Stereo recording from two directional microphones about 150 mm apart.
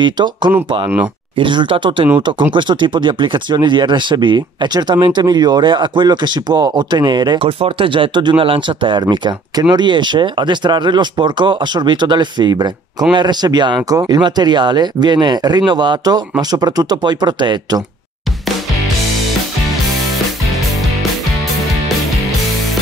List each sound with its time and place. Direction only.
0.0 s speech: 30° right (ahead or behind)